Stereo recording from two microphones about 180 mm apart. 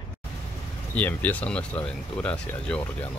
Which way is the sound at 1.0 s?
10° left (ahead or behind).